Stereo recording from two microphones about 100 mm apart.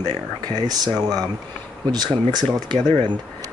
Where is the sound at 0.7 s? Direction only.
40° right (ahead or behind).